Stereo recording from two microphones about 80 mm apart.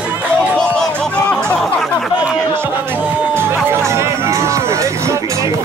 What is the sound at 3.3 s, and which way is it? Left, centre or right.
Music, right.